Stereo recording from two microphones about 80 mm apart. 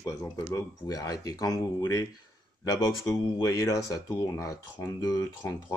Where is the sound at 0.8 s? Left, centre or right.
Left.